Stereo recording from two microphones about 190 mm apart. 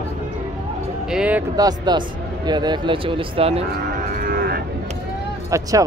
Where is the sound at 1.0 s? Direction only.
5° right (ahead or behind).